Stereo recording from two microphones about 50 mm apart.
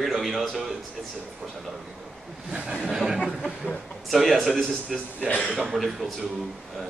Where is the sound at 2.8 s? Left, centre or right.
Centre.